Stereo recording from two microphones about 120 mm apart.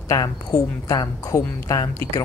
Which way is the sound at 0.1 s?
25° left (ahead or behind).